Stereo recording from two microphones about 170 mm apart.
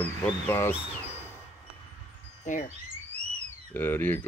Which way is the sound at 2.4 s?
50° left (ahead or behind).